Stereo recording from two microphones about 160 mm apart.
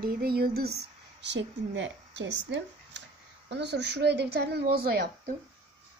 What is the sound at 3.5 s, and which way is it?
Speech, 90° right.